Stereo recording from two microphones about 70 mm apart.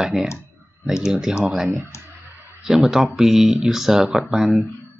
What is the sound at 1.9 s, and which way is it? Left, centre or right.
Clicking, left.